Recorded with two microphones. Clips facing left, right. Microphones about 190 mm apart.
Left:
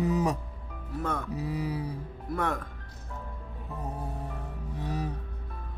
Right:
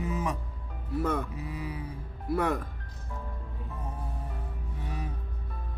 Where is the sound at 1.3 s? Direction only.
40° left (ahead or behind).